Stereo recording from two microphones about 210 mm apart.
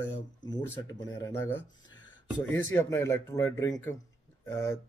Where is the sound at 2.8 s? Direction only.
10° left (ahead or behind).